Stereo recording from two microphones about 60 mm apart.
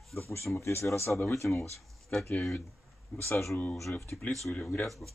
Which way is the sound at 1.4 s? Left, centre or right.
Centre.